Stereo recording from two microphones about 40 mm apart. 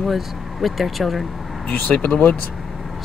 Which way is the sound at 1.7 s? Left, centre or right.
Left.